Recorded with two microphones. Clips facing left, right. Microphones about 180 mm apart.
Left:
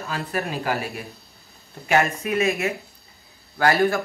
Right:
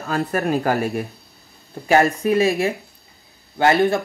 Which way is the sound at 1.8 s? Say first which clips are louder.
Right 5 dB; 35° right (ahead or behind).